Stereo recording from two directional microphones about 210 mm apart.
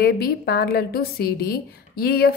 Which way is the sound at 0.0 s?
50° left (ahead or behind).